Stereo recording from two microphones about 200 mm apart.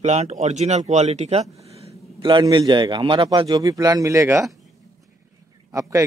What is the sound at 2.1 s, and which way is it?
A man's voice, 20° right (ahead or behind).